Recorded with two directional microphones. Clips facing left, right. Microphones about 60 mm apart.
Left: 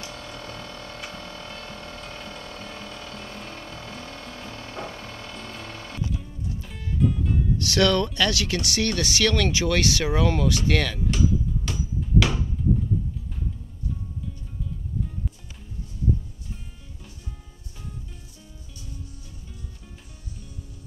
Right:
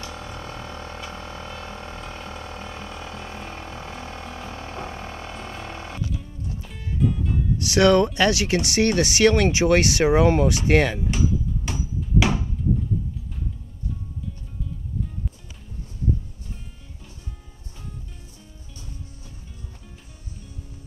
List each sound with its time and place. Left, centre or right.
0.0 s a sound: right
7.0 s music: centre
7.5 s speech: right
11.1 s music: right